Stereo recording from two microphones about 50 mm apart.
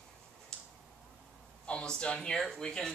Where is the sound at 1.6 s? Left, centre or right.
Left.